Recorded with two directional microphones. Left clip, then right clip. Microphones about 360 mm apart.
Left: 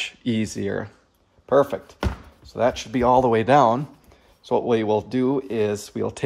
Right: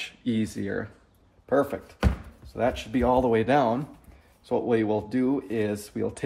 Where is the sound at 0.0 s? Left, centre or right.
Centre.